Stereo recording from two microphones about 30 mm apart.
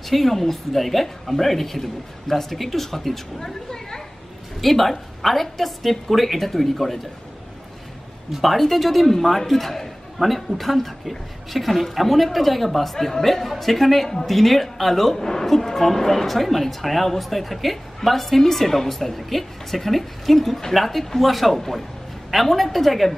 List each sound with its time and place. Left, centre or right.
0.1 s a man's voice: centre
3.3 s a man's voice: centre
4.6 s speech: centre
8.3 s a man's voice: centre